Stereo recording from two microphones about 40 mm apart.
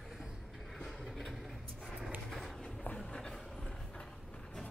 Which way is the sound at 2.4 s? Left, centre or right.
Centre.